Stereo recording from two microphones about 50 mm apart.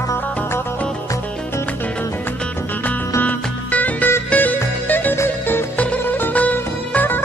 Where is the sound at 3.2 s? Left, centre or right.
Left.